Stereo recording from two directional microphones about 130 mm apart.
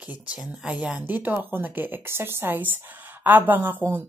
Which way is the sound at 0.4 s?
5° right (ahead or behind).